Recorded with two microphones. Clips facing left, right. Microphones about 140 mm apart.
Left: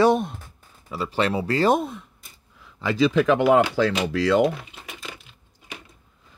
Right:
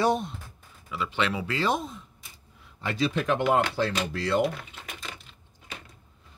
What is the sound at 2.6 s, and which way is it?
Speech, 90° left.